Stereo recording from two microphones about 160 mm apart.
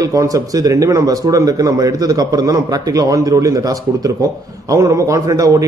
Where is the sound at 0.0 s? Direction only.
20° right (ahead or behind).